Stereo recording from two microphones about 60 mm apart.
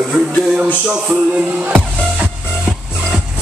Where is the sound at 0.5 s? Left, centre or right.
Right.